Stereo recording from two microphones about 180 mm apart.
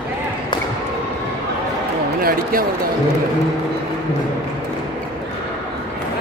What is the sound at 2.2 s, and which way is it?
Speech, 55° right (ahead or behind).